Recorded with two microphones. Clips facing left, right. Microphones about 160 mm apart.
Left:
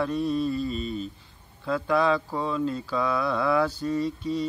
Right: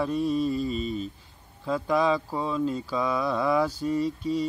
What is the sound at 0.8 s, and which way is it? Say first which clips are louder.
Speech: right 1 dB; 35° left (ahead or behind).